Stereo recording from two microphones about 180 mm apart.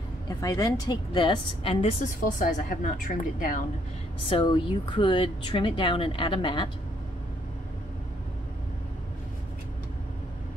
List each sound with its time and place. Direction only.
0.4 s speech: 20° left (ahead or behind)
2.0 s a woman's voice: 50° left (ahead or behind)
4.3 s speech: 30° left (ahead or behind)